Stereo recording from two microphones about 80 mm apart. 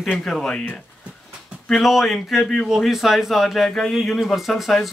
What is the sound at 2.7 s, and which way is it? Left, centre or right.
Speech, centre.